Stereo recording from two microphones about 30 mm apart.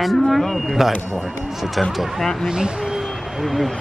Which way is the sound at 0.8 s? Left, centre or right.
Centre.